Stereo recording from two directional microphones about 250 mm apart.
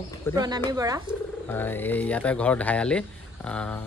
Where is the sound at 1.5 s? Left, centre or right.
Centre.